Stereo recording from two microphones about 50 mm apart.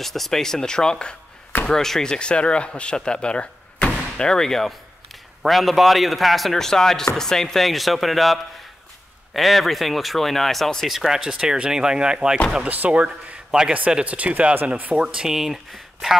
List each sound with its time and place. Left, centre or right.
0.0 s speech: centre
12.6 s speech: right
13.5 s a man's voice: centre
14.0 s speech: right
14.9 s speech: centre